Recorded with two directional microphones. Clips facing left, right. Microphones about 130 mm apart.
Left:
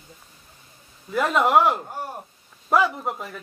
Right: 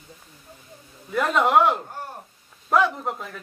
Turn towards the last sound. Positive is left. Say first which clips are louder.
# even
turn(degrees=5)  # may be behind; listen again after turning